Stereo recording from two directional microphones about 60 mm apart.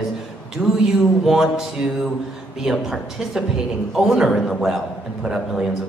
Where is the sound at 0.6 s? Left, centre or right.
Right.